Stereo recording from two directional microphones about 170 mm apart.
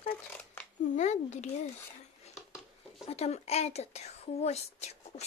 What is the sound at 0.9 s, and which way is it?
Speech, 45° left (ahead or behind).